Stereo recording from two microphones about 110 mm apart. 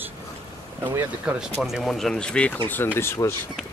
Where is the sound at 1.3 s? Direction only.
5° right (ahead or behind); by 3.3 s 25° left (ahead or behind).